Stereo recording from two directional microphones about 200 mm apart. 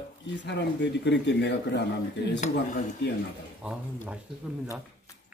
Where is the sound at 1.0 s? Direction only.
60° left (ahead or behind).